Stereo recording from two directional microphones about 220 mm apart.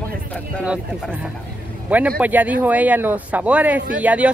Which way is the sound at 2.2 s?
5° right (ahead or behind).